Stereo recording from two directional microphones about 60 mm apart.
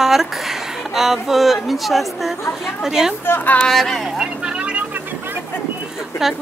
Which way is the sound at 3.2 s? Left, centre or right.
Left.